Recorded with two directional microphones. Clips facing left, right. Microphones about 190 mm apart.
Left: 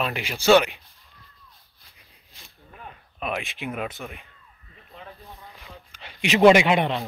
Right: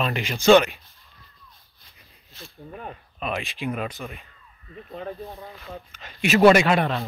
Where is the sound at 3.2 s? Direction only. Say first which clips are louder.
Right 1 dB; 5° left (ahead or behind).